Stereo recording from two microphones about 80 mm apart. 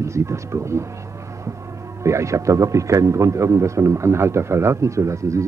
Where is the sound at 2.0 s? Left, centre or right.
Right.